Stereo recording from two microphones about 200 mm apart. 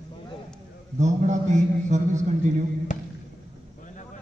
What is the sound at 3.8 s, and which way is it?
Vehicle, 40° left (ahead or behind).